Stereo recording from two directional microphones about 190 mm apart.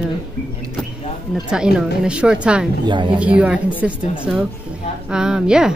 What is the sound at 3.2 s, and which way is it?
Speech, 5° right (ahead or behind).